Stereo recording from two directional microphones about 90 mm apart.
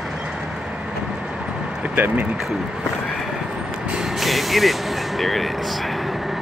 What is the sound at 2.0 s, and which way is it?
Speech, 20° right (ahead or behind).